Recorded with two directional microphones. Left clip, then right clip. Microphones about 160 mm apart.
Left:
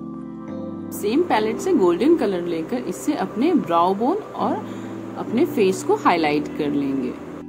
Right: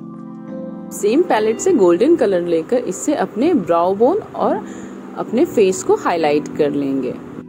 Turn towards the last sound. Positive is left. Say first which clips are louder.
# right 4 dB
turn(degrees=-30)  # may be behind; listen again after turning